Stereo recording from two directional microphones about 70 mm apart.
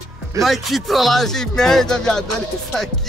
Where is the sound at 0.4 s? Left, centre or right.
Centre.